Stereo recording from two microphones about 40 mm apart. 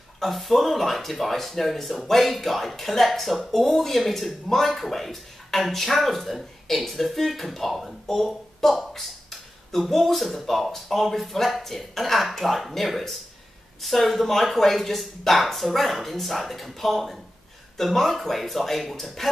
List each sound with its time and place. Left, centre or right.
0.2 s speech: centre